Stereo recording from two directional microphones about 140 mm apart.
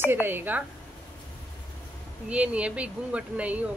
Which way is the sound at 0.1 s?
15° right (ahead or behind).